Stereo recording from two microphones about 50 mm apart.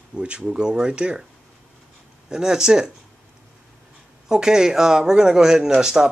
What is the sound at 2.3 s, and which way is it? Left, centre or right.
Speech, centre.